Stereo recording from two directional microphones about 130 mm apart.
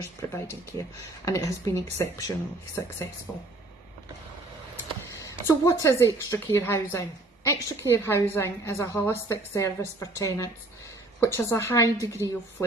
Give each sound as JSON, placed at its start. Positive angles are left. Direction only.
{"t": 0.3, "sound": "speech", "side_deg": 20}
{"t": 5.1, "sound": "speech", "side_deg": 25}